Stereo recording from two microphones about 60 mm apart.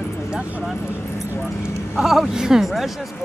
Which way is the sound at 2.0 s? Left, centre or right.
Centre.